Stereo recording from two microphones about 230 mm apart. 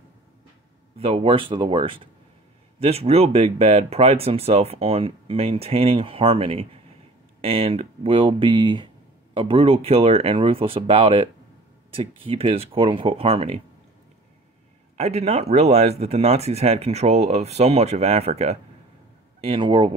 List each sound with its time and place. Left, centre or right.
0.9 s speech: right
15.0 s speech: right